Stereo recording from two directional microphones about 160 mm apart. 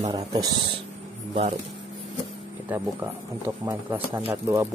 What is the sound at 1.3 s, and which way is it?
Speech, 35° right (ahead or behind).